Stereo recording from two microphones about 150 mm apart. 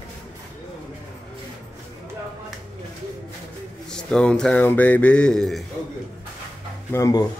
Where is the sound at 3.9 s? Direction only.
5° left (ahead or behind).